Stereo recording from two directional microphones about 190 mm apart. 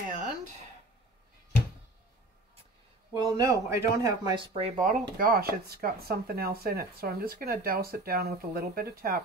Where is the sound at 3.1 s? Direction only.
20° right (ahead or behind); by 9.2 s 50° right (ahead or behind).